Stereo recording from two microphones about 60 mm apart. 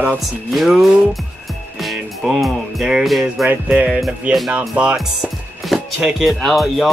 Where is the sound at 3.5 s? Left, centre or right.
Right.